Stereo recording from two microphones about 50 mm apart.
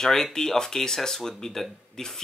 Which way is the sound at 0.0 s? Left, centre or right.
Centre.